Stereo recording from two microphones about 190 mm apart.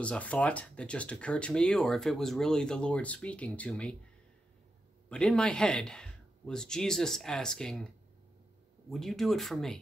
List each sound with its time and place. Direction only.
0.0 s speech: 5° left (ahead or behind)
5.1 s speech: 5° left (ahead or behind)